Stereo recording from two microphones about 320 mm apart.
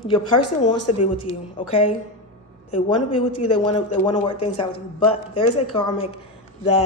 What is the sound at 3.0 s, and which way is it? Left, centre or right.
Speech, left.